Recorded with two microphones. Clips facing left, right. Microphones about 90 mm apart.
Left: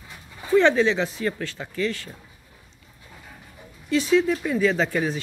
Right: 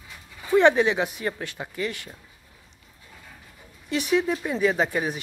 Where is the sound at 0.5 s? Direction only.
20° right (ahead or behind).